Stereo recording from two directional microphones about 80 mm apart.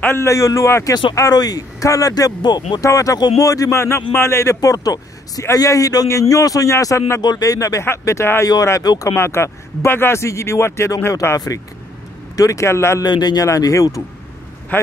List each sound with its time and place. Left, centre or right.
0.0 s speech: left
1.3 s speech: left
2.8 s speech: left
3.2 s speech: left
3.7 s speech: left
4.6 s speech: left
7.2 s speech: left
8.8 s speech: left
9.1 s speech: left
11.3 s speech: left
13.0 s speech: left
13.5 s speech: left
14.7 s speech: left